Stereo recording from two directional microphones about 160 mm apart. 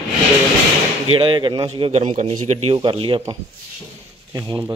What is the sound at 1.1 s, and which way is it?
A man's voice, 30° right (ahead or behind).